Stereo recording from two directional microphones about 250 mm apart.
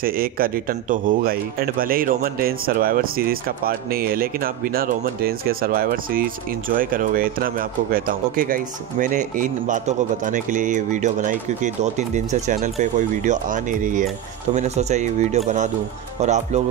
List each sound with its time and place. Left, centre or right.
0.0 s speech: right